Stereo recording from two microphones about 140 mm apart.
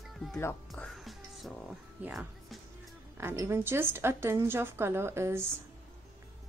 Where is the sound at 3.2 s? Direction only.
20° right (ahead or behind).